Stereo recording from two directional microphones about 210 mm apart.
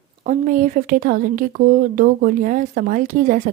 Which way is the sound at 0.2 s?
40° right (ahead or behind).